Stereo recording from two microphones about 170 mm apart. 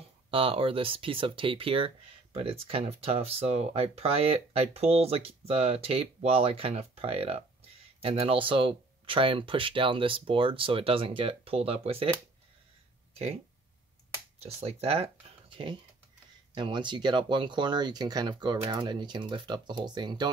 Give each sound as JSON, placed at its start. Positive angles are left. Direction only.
{"t": 0.3, "sound": "speech", "side_deg": -35}
{"t": 13.1, "sound": "speech", "side_deg": -40}
{"t": 14.4, "sound": "speech", "side_deg": -35}
{"t": 16.5, "sound": "speech", "side_deg": -25}